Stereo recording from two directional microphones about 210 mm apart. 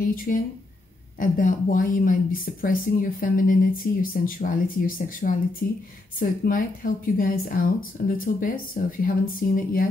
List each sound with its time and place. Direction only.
0.3 s speech: 40° left (ahead or behind)